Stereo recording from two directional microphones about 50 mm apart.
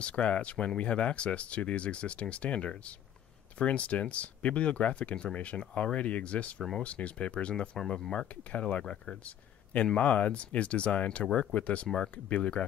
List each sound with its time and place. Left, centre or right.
0.0 s speech: left
9.9 s speech: left